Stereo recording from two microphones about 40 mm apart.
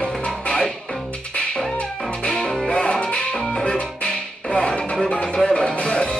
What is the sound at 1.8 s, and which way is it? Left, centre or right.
Music, left.